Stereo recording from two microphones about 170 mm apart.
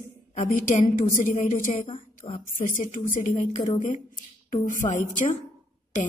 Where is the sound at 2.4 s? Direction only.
50° left (ahead or behind).